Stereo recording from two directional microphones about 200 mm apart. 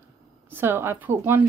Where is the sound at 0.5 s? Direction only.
10° right (ahead or behind).